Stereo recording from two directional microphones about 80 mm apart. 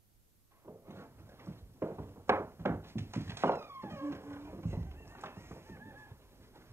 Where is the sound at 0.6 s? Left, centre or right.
Right.